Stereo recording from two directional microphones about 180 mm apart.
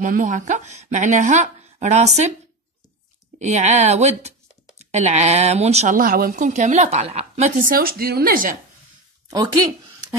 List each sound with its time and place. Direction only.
0.0 s speech: 45° right (ahead or behind)
3.3 s speech: 40° right (ahead or behind)